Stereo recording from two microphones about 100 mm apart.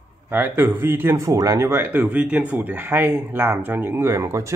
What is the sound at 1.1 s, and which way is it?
Speech, 35° right (ahead or behind).